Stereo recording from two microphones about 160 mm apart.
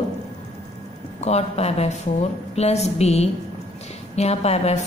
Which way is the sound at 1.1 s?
40° left (ahead or behind).